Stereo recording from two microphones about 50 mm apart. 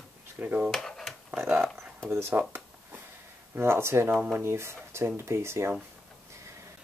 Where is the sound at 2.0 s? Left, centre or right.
Right.